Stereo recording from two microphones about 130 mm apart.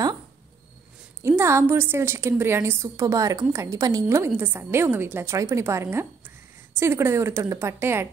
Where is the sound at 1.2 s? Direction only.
20° right (ahead or behind).